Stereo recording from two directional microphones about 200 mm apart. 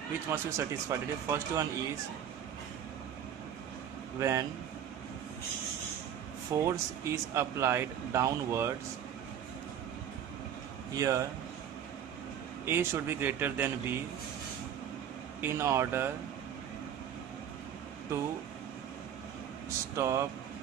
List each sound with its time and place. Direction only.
0.3 s speech: 10° right (ahead or behind)
4.2 s speech: 15° right (ahead or behind)
6.6 s speech: 15° right (ahead or behind)
11.0 s speech: 15° right (ahead or behind)
12.6 s speech: 10° right (ahead or behind)
15.4 s speech: 10° right (ahead or behind)
20.0 s speech: 15° right (ahead or behind)